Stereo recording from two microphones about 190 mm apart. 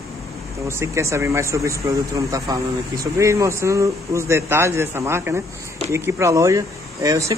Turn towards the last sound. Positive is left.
turn(degrees=-15)  # may be behind; listen again after turning